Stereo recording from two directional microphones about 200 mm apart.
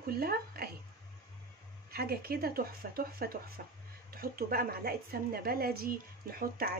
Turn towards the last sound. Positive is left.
turn(degrees=-50)  # may be behind; listen again after turning